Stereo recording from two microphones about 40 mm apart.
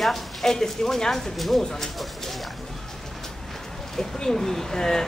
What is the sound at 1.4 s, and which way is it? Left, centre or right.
Speech, centre.